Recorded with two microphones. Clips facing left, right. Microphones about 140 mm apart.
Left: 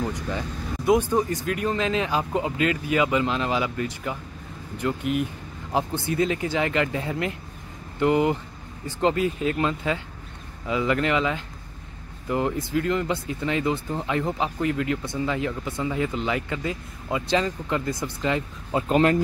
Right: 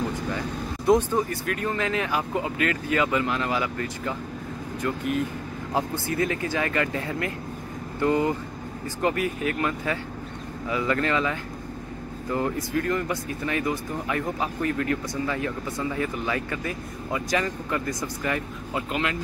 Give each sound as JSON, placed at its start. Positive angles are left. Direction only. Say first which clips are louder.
{"t": 0.8, "sound": "speech", "louder": "even", "side_deg": 15}